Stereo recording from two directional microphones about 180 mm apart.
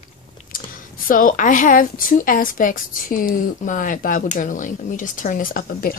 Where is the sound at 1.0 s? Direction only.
50° left (ahead or behind).